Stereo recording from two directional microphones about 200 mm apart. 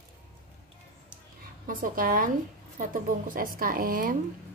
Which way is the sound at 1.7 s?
45° right (ahead or behind).